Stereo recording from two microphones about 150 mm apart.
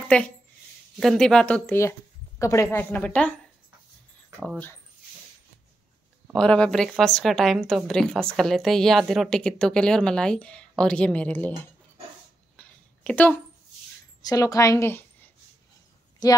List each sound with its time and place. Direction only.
0.1 s speech: 10° left (ahead or behind)
6.3 s a woman's voice: 5° left (ahead or behind)
12.5 s a sound: 10° left (ahead or behind)
14.2 s a woman's voice: 25° left (ahead or behind)
16.2 s speech: 25° left (ahead or behind)